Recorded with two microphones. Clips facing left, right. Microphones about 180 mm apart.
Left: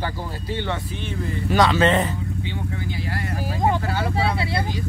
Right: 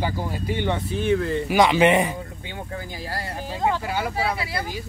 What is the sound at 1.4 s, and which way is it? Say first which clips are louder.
Speech: even; 15° right (ahead or behind).